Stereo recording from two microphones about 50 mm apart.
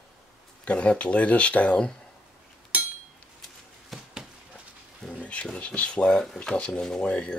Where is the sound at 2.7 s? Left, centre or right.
Right.